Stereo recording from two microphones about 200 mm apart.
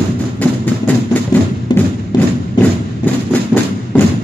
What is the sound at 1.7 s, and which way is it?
Music, 20° left (ahead or behind).